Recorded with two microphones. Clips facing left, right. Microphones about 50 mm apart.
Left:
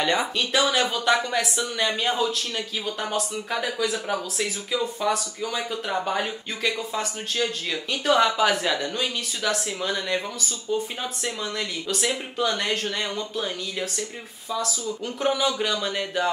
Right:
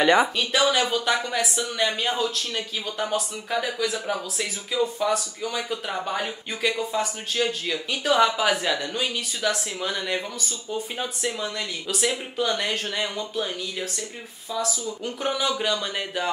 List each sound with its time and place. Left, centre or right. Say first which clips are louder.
0.0 s speech: right 5 dB; right
0.4 s speech: right 1 dB; centre